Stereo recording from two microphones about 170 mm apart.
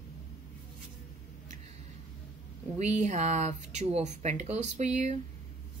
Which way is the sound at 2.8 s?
40° right (ahead or behind).